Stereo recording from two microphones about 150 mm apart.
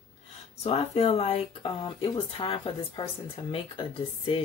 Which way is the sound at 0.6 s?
40° left (ahead or behind).